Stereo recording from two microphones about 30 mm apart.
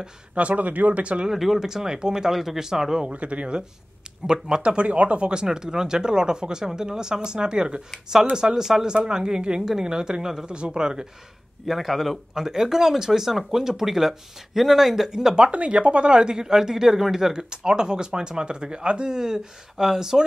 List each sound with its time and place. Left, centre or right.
0.3 s speech: right
0.7 s speech: right
1.3 s speech: centre
2.3 s speech: centre
3.1 s speech: right
4.3 s speech: right
4.8 s speech: right
11.6 s speech: centre
12.4 s speech: centre
15.0 s speech: right
15.5 s speech: right
19.0 s speech: centre